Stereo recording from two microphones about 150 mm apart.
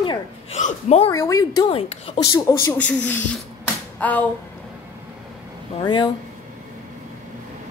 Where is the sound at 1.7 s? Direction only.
40° left (ahead or behind).